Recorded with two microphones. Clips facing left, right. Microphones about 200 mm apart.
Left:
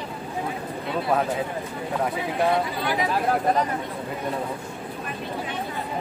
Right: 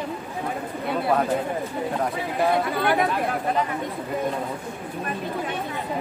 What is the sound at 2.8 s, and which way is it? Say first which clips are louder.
Speech: right 4 dB; 60° right (ahead or behind).